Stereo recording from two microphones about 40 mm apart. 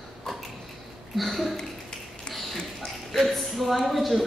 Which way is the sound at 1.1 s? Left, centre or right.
Centre.